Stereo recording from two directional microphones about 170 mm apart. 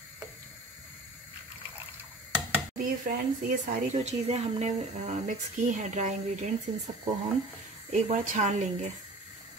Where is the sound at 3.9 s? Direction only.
40° right (ahead or behind).